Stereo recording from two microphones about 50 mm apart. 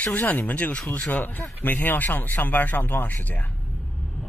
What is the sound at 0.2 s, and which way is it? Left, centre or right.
Speech, left.